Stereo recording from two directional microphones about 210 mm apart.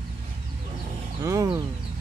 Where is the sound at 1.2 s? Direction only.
15° right (ahead or behind).